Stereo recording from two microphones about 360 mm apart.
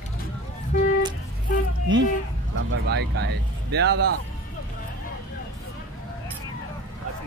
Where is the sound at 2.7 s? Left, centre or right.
Right.